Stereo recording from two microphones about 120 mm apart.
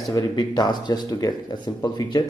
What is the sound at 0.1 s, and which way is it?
Speech, 35° left (ahead or behind).